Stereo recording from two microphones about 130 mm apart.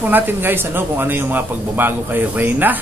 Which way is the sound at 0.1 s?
15° right (ahead or behind).